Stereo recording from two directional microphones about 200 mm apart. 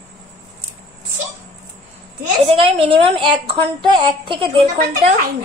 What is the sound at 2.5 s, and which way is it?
A woman's voice, 30° right (ahead or behind).